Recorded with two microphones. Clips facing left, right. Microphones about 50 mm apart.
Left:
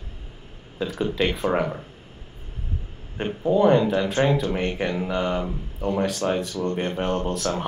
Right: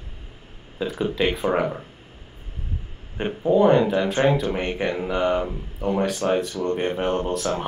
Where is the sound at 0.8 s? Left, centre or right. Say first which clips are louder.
Right 1 dB; centre.